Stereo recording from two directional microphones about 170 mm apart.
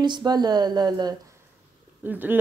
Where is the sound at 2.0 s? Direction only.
10° right (ahead or behind).